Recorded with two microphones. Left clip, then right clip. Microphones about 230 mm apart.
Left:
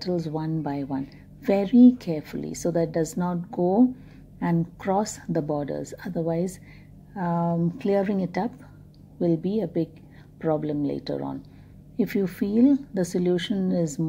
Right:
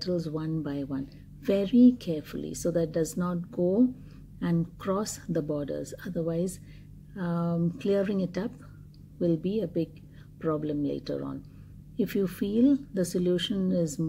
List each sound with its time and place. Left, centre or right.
0.1 s a woman's voice: left